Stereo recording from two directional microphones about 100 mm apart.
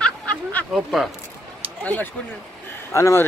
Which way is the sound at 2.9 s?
30° left (ahead or behind).